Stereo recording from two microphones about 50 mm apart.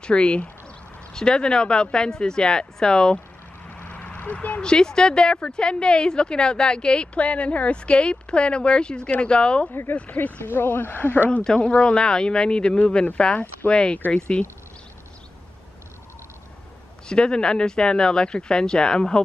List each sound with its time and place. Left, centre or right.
0.0 s a woman's voice: left
3.6 s vehicle: left
4.2 s speech: left
4.6 s a woman's voice: centre
9.9 s speech: left
11.4 s a woman's voice: centre
17.1 s speech: centre